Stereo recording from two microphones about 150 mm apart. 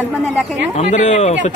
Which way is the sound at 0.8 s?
50° left (ahead or behind).